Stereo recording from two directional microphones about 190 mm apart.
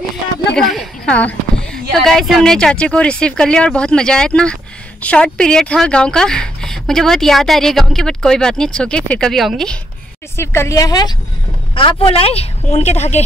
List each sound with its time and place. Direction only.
0.6 s speech: centre (ahead or behind)
10.3 s a woman's voice: 15° left (ahead or behind); by 13.2 s 35° left (ahead or behind)